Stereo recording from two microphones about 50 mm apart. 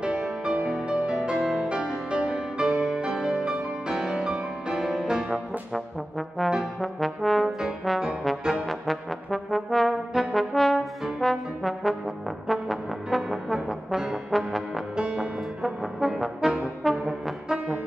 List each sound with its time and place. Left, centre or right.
0.0 s music: centre
5.3 s brass instrument: centre
8.6 s brass instrument: centre
15.0 s music: centre
15.6 s brass instrument: centre
16.3 s brass instrument: centre
16.8 s brass instrument: centre